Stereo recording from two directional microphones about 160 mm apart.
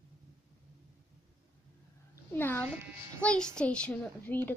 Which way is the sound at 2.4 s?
10° left (ahead or behind).